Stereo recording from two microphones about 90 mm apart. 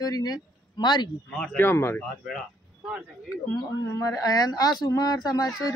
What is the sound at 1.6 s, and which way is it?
Speech, 25° left (ahead or behind).